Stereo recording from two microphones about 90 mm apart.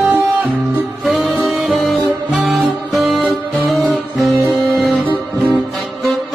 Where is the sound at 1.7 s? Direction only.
Centre (ahead or behind).